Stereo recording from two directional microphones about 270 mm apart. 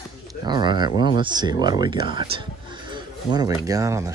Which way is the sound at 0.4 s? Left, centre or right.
Centre.